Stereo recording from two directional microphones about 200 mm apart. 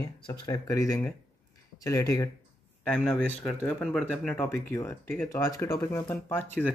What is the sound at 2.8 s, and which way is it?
Speech, 5° left (ahead or behind).